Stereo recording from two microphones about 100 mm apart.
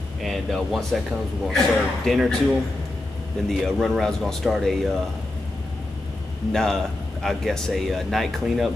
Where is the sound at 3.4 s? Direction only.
Centre (ahead or behind).